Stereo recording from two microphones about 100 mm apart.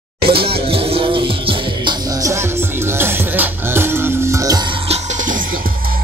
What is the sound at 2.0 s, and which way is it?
Music, 35° right (ahead or behind).